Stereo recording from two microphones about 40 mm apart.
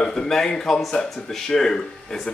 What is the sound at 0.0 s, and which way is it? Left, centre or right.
Speech, centre.